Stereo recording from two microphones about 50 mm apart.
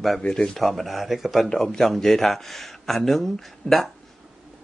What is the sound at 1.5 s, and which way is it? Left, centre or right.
Speech, centre.